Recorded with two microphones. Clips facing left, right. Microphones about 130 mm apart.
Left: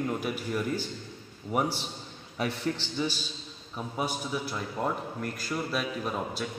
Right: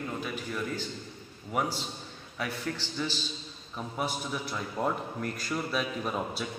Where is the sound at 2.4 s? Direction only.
25° left (ahead or behind).